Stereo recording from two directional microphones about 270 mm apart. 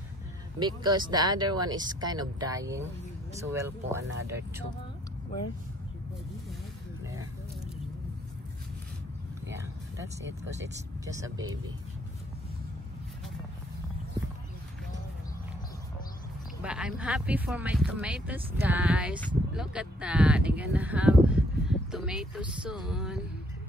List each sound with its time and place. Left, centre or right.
0.6 s speech: centre
10.2 s speech: right
11.1 s speech: centre
11.4 s speech: right
16.6 s speech: centre